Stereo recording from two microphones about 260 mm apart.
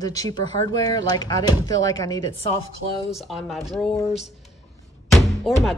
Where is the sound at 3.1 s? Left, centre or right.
Centre.